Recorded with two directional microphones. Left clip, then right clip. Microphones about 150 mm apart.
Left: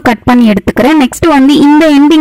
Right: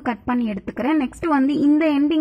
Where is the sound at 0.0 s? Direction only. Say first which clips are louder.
Left 16 dB; 50° left (ahead or behind).